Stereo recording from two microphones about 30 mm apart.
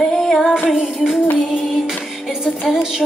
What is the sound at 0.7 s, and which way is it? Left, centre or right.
Music, centre.